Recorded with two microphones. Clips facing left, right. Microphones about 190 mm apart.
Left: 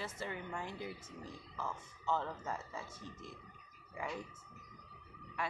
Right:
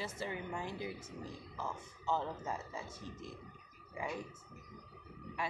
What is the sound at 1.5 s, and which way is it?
Speech, 10° right (ahead or behind).